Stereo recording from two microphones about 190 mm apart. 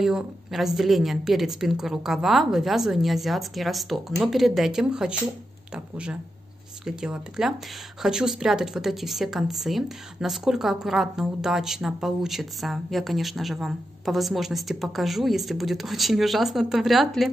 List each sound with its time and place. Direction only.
0.0 s a woman's voice: centre (ahead or behind)
6.8 s a woman's voice: 5° right (ahead or behind)